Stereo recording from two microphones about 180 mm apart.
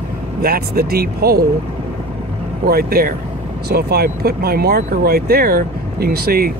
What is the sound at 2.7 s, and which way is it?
Speech, 55° right (ahead or behind).